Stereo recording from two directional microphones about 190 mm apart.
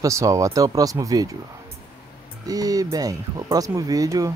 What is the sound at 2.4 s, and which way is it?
Speech, 20° right (ahead or behind).